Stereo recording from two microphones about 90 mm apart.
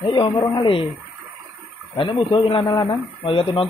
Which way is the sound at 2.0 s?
90° left.